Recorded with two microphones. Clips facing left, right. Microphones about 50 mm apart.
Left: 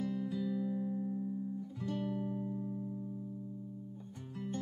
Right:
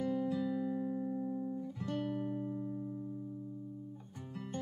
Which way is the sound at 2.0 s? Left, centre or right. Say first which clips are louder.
Even; right.